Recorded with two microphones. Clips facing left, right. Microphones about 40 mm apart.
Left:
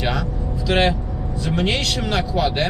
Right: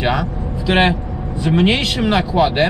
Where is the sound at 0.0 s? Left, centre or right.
Centre.